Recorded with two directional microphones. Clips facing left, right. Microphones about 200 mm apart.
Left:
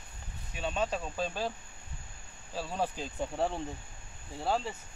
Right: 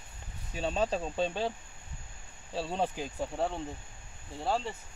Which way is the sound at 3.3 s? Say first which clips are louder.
Left 2 dB; centre (ahead or behind).